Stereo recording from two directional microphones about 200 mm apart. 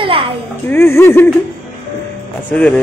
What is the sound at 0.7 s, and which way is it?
Speech, 10° left (ahead or behind).